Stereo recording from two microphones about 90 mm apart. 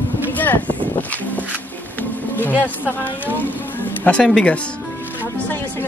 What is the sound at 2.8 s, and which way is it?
Speech, 20° left (ahead or behind).